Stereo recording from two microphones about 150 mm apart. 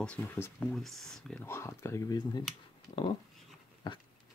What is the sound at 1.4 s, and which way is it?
Speech, 15° left (ahead or behind).